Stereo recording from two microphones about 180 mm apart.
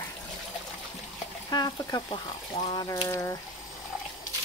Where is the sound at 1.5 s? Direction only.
20° left (ahead or behind).